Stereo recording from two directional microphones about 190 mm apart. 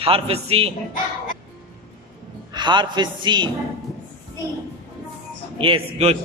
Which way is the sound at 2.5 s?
25° right (ahead or behind).